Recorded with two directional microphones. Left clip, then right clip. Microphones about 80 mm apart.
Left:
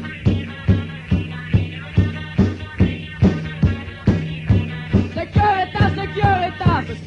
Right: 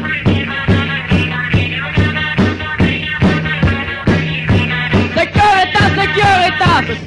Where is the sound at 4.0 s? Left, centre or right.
Left.